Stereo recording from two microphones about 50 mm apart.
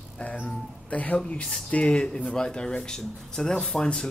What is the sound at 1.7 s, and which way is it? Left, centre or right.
Speech, left.